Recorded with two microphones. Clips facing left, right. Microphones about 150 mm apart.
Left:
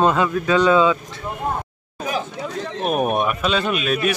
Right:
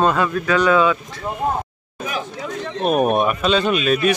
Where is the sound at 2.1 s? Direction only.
35° left (ahead or behind).